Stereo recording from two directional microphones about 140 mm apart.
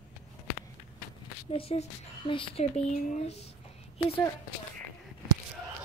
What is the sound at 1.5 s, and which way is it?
Speech, 45° left (ahead or behind).